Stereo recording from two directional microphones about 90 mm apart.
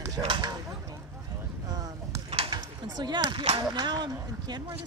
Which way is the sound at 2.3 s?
90° right.